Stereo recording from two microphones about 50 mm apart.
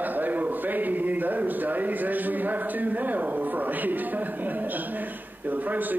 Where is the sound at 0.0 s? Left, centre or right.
Right.